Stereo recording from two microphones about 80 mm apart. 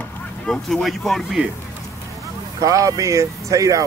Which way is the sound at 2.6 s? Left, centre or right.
Right.